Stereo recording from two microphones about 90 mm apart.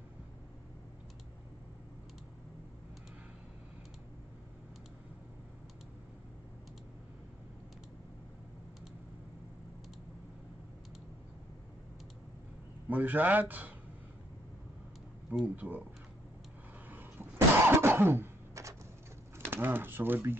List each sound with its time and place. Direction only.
12.9 s speech: 20° right (ahead or behind)
15.4 s speech: 15° right (ahead or behind)
16.9 s cough: 25° right (ahead or behind)
19.3 s speech: 25° right (ahead or behind)